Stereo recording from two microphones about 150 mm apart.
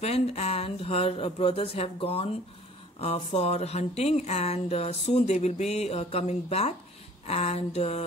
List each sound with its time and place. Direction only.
0.0 s speech: 45° left (ahead or behind)